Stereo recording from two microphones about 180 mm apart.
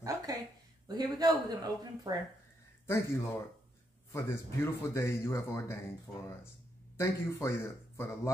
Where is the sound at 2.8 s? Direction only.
15° left (ahead or behind).